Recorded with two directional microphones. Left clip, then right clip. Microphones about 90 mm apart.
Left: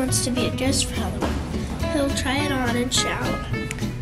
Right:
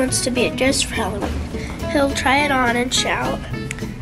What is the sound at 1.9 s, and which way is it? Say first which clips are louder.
Speech: right 8 dB; 20° right (ahead or behind).